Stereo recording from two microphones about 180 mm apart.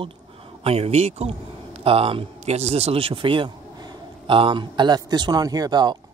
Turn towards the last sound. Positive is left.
turn(degrees=-25)  # may be behind; listen again after turning